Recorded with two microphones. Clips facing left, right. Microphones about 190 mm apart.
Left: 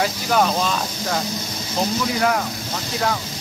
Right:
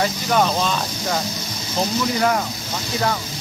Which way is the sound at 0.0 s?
5° left (ahead or behind).